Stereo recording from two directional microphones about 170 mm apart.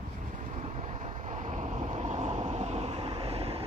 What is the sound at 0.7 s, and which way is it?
Vehicle, 40° right (ahead or behind).